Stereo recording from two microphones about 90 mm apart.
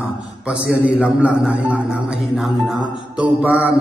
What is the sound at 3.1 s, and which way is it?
Speech, 15° right (ahead or behind).